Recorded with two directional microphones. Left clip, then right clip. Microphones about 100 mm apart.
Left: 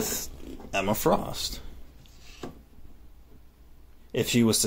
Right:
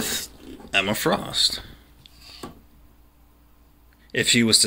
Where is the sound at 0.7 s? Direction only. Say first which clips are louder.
Right 3 dB; 10° left (ahead or behind).